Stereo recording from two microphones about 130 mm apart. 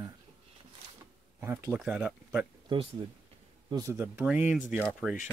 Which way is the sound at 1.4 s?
20° right (ahead or behind).